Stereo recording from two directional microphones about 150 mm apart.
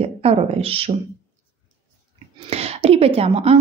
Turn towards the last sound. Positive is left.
turn(degrees=-45)  # may be behind; listen again after turning